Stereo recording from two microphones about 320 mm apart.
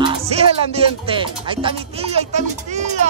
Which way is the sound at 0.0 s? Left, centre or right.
Centre.